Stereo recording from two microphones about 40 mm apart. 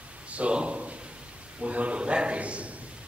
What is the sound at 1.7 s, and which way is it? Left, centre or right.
A man's voice, right.